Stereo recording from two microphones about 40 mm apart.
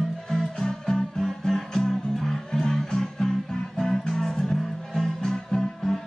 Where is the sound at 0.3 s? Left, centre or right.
Centre.